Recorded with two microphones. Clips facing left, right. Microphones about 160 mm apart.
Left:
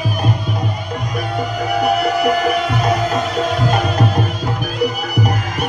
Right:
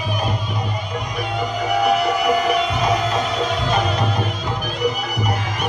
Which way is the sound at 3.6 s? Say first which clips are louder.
Left 3 dB; 45° left (ahead or behind).